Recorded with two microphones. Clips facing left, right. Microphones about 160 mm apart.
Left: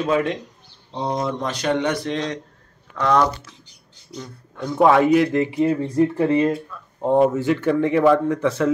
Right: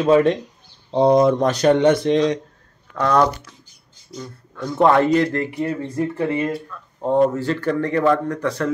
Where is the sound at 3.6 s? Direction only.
65° left (ahead or behind).